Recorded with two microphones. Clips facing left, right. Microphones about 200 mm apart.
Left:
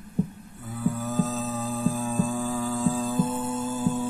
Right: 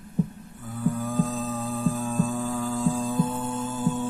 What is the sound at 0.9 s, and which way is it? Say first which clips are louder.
Hum: right 1 dB; 5° left (ahead or behind).